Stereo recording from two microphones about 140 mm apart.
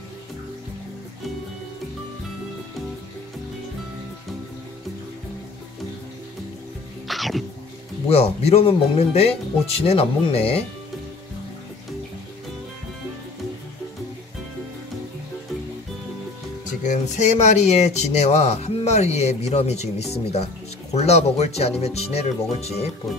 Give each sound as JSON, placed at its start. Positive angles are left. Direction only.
{"t": 7.1, "sound": "music", "side_deg": 0}
{"t": 8.1, "sound": "speech", "side_deg": 50}
{"t": 16.8, "sound": "speech", "side_deg": 60}